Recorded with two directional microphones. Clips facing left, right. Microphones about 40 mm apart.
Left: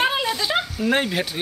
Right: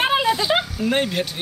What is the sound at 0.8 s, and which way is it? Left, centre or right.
Speech, centre.